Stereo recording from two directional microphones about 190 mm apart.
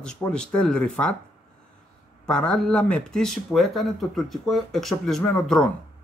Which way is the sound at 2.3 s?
5° left (ahead or behind).